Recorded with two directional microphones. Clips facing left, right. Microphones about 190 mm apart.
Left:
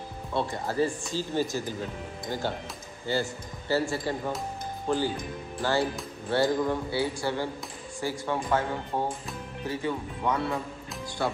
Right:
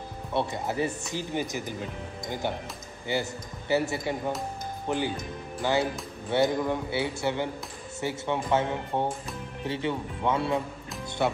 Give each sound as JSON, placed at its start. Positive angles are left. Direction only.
{"t": 0.3, "sound": "speech", "side_deg": -20}